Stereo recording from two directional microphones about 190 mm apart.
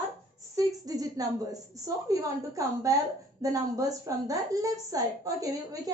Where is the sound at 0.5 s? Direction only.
20° right (ahead or behind).